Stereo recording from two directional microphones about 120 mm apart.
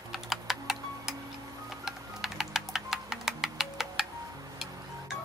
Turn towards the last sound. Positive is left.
turn(degrees=-5)  # may be behind; listen again after turning